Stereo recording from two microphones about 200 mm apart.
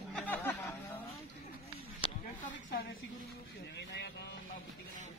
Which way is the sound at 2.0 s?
25° left (ahead or behind).